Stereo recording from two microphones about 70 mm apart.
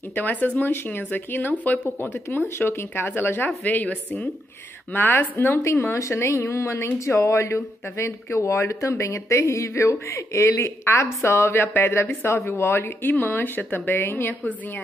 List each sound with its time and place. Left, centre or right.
0.1 s speech: left
4.9 s speech: left
5.6 s speech: left